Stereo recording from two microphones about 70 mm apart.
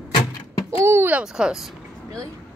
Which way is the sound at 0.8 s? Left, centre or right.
Right.